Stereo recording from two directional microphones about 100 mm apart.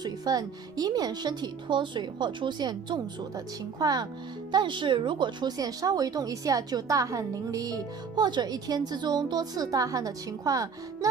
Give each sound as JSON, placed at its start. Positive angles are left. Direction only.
{"t": 0.0, "sound": "a woman's voice", "side_deg": -40}